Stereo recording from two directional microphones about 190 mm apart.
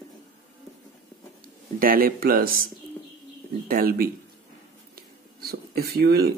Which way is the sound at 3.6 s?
50° right (ahead or behind).